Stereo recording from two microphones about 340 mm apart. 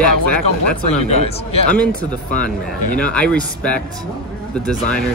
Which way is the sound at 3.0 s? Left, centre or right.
Centre.